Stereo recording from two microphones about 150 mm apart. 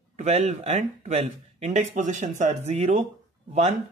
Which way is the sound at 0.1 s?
45° right (ahead or behind).